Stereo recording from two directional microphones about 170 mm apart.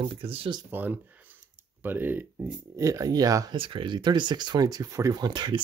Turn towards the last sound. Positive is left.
turn(degrees=-25)  # may be behind; listen again after turning